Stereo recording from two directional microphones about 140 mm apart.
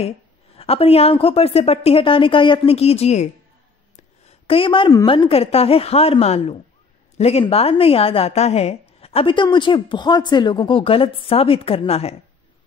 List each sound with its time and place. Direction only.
0.6 s a woman's voice: 45° left (ahead or behind)
4.5 s a woman's voice: 40° left (ahead or behind)